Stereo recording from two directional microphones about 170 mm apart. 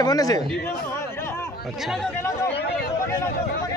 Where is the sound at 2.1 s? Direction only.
15° left (ahead or behind).